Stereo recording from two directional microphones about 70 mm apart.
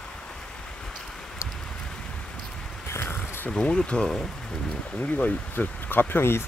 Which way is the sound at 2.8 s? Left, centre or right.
Left.